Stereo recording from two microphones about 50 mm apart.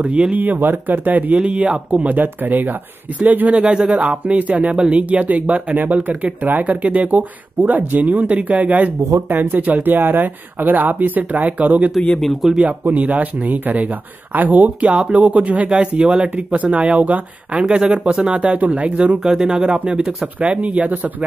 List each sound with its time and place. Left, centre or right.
0.0 s speech: right
0.4 s speech: right
2.2 s speech: right
3.5 s speech: right
12.2 s speech: centre
12.5 s speech: right
19.1 s speech: centre